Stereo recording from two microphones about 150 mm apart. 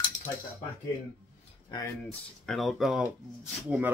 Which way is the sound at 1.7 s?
30° left (ahead or behind).